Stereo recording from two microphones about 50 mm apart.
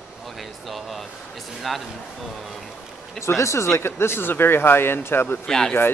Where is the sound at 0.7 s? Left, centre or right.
Centre.